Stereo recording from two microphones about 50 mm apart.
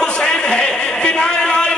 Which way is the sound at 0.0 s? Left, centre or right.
Centre.